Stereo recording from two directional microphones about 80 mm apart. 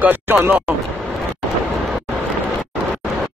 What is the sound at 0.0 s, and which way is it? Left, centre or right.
Speech, right.